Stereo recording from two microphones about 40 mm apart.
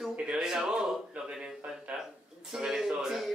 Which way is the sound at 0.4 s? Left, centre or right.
Centre.